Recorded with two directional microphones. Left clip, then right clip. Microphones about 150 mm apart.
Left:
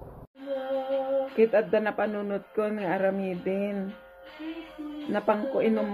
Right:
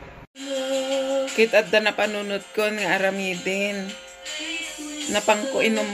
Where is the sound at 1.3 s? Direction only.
15° right (ahead or behind).